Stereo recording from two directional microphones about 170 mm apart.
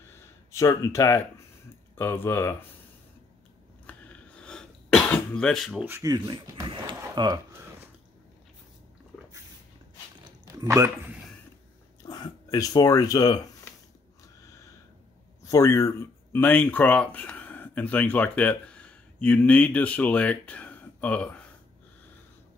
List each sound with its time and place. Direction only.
0.5 s speech: 15° left (ahead or behind)
3.8 s throat clearing: 5° left (ahead or behind)
5.9 s speech: 15° right (ahead or behind)
6.1 s speech: 25° right (ahead or behind)
10.4 s a sound: 20° right (ahead or behind)
12.0 s speech: 25° left (ahead or behind)
15.5 s speech: 15° left (ahead or behind)